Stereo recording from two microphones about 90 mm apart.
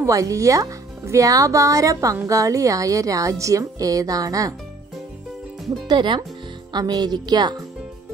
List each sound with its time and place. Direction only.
0.0 s speech: 35° right (ahead or behind)
5.9 s a woman's voice: 60° right (ahead or behind)